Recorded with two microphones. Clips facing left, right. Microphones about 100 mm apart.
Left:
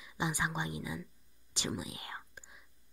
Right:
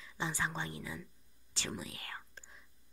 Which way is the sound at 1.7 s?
15° left (ahead or behind).